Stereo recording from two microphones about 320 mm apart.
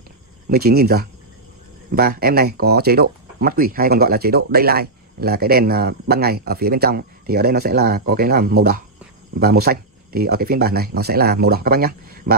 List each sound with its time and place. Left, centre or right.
0.5 s speech: right